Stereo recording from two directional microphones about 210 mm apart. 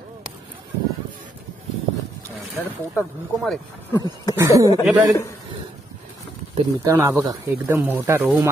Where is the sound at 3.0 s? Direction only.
10° left (ahead or behind).